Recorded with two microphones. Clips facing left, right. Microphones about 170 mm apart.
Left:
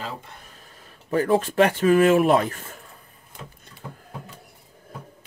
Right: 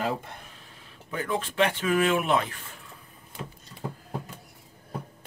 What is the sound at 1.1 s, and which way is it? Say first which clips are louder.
Speech: left 9 dB; 45° left (ahead or behind).